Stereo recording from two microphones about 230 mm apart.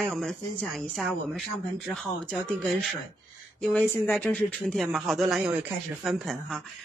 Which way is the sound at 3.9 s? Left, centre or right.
Centre.